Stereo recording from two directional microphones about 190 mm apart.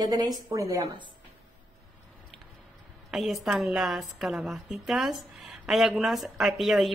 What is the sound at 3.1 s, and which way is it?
A woman's voice, centre (ahead or behind).